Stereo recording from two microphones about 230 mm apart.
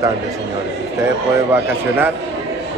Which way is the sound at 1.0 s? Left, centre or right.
Centre.